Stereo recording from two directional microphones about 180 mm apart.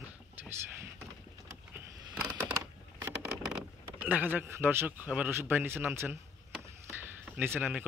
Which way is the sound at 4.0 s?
10° right (ahead or behind).